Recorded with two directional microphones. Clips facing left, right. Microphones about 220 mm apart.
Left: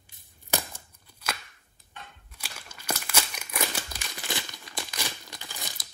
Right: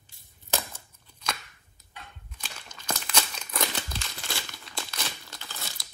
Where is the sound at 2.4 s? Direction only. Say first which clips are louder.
Even; 10° left (ahead or behind).